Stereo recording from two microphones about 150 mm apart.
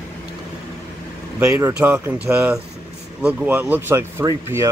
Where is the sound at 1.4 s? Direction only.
20° right (ahead or behind).